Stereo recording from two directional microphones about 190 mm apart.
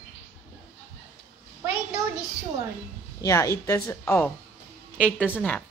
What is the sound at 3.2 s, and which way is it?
Speech, 15° left (ahead or behind).